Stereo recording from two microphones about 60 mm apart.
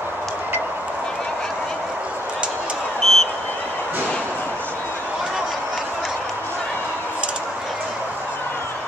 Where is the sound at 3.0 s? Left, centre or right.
Centre.